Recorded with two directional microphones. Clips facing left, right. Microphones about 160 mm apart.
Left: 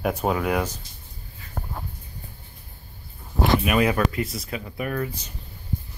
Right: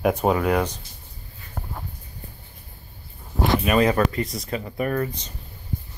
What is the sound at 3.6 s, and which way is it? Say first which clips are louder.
Speech: right 2 dB; 10° left (ahead or behind).